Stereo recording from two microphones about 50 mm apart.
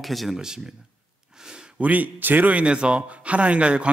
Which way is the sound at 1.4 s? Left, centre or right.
Centre.